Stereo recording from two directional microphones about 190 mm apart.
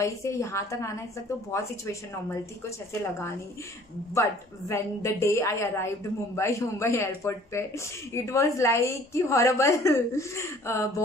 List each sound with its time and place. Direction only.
0.0 s a woman's voice: 15° left (ahead or behind)
4.1 s a woman's voice: 15° left (ahead or behind)